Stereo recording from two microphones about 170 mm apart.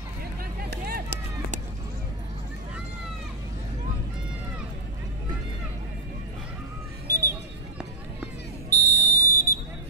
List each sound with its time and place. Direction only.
0.6 s music: 65° right (ahead or behind)
7.1 s a sound: 20° right (ahead or behind)
8.6 s fire alarm: 20° right (ahead or behind)